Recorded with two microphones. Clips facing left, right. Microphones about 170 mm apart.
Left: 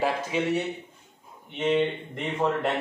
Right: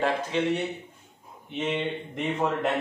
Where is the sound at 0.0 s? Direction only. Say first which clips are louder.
Even; 10° left (ahead or behind).